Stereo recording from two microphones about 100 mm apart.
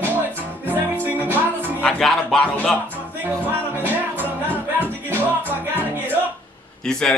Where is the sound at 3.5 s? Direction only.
20° right (ahead or behind).